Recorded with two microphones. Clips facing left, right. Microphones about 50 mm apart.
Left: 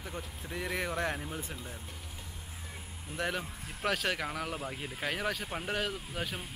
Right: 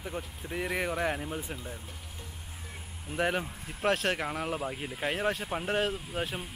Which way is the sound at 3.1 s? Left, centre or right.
Centre.